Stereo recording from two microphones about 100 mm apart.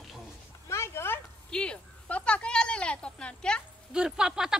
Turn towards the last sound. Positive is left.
turn(degrees=-5)  # may be behind; listen again after turning